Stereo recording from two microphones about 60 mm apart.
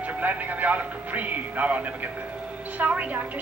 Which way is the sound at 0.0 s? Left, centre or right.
Right.